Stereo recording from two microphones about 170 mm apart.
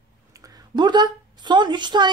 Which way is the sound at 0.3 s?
20° right (ahead or behind).